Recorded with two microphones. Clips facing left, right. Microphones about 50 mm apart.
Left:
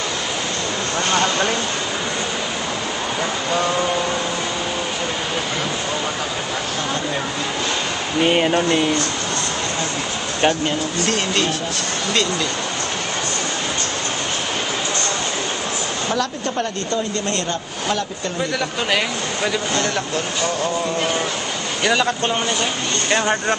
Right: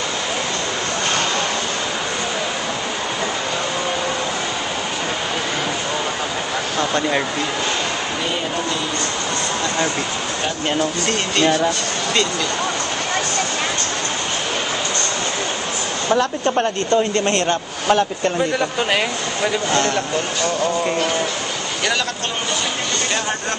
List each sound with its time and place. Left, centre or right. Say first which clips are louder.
16.2 s speech: right 4 dB; right
18.4 s speech: left 1 dB; centre
21.8 s speech: left 4 dB; centre